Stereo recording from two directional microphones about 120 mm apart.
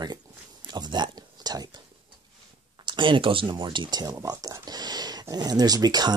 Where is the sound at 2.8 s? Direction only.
40° right (ahead or behind).